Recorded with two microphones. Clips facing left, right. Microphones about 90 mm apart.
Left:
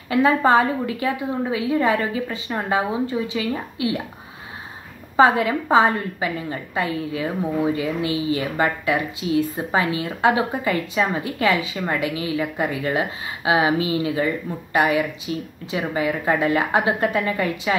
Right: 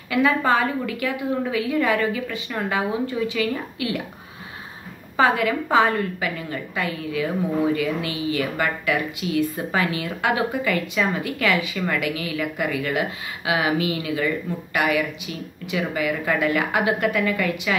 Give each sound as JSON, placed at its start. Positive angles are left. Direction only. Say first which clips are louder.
{"t": 0.1, "sound": "a woman's voice", "louder": "left 3 dB", "side_deg": 30}
{"t": 5.1, "sound": "a woman's voice", "louder": "left 3 dB", "side_deg": 30}